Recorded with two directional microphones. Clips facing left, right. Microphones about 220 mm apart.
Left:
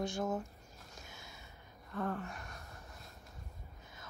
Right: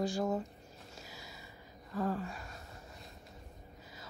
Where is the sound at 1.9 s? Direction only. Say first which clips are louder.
Right 3 dB; 15° right (ahead or behind).